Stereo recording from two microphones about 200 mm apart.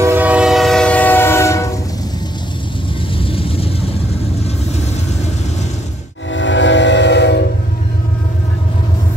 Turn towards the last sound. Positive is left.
turn(degrees=60)  # may be behind; listen again after turning